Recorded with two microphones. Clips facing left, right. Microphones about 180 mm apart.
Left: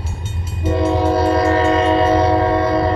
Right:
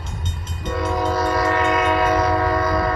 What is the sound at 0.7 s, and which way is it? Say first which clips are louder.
Train: left 5 dB; 30° left (ahead or behind).